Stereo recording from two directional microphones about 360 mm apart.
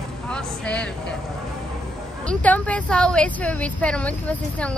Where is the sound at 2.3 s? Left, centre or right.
Centre.